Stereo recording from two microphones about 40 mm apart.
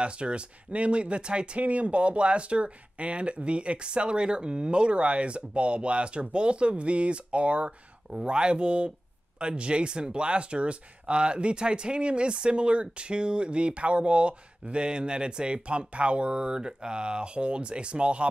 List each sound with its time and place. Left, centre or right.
0.0 s speech: right
1.6 s speech: right